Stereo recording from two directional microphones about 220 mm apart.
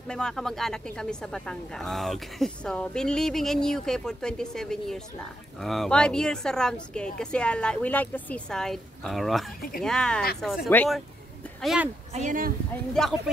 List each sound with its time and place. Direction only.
0.1 s a woman's voice: 5° left (ahead or behind)
12.1 s speech: 35° right (ahead or behind)
13.0 s a woman's voice: centre (ahead or behind)